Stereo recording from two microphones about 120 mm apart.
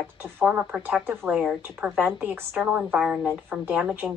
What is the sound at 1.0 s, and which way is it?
Speech, 20° right (ahead or behind).